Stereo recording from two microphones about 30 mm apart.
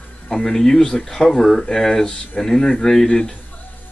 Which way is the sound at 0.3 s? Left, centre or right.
Centre.